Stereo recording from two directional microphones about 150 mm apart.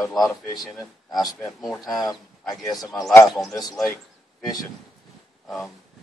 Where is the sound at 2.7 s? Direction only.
25° left (ahead or behind).